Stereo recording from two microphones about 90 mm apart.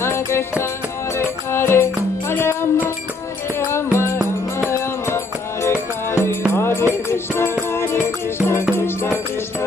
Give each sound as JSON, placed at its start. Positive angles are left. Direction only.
{"t": 0.0, "sound": "music", "side_deg": 30}